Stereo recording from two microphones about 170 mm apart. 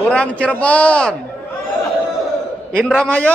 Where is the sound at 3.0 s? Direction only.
10° left (ahead or behind).